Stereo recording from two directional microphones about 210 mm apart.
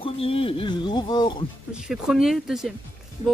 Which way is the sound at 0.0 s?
25° left (ahead or behind).